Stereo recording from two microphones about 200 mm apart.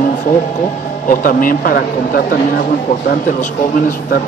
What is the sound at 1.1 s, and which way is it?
Speech, 45° left (ahead or behind).